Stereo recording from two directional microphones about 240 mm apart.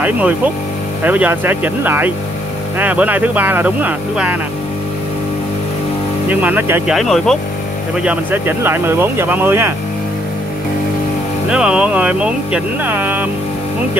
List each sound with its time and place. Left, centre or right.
1.0 s speech: centre
6.2 s speech: centre
11.4 s speech: centre